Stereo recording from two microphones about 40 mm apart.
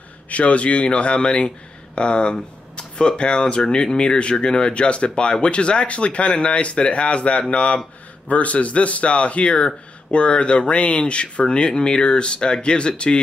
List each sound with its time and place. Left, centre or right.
0.3 s a man's voice: left